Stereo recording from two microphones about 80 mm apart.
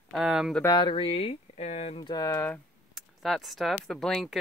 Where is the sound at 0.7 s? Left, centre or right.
Left.